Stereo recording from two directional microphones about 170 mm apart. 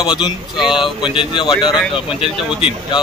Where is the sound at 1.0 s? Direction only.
30° left (ahead or behind).